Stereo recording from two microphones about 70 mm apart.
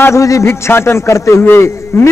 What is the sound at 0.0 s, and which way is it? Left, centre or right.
A man's voice, left.